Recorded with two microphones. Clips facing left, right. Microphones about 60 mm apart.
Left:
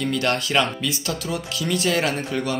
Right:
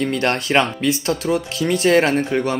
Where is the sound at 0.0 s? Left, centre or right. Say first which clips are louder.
Right 3 dB; right.